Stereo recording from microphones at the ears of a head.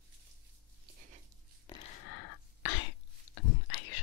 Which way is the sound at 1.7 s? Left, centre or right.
Left.